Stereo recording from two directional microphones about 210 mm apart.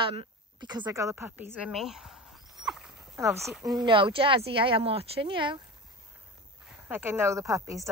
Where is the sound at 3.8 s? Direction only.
25° right (ahead or behind).